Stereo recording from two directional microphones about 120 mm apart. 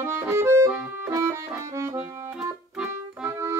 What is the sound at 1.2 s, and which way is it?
Music, 25° right (ahead or behind).